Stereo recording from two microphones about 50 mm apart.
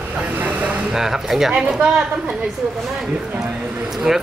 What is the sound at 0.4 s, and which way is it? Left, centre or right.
Vehicle, right.